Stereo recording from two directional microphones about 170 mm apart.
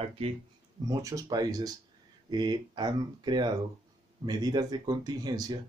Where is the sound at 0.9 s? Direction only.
20° right (ahead or behind).